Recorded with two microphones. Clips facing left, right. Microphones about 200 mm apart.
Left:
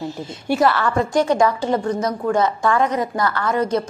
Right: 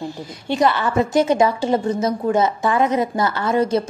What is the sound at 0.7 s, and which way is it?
A woman's voice, 20° right (ahead or behind).